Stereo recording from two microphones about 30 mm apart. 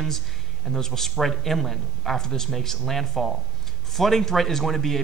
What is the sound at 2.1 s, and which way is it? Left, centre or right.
Speech, centre.